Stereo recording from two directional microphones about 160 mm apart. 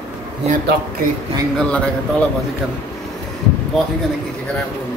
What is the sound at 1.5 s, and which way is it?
Speech, 5° left (ahead or behind).